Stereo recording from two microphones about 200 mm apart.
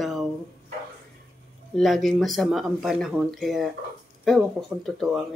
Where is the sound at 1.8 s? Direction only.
Centre (ahead or behind).